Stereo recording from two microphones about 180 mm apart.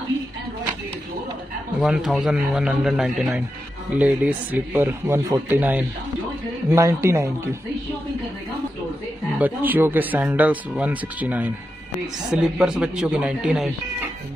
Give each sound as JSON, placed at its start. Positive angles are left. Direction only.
{"t": 1.8, "sound": "speech", "side_deg": -5}
{"t": 9.4, "sound": "speech", "side_deg": -10}